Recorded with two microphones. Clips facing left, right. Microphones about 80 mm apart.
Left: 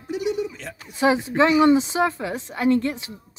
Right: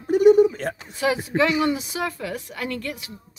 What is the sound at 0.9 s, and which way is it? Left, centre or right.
A woman's voice, left.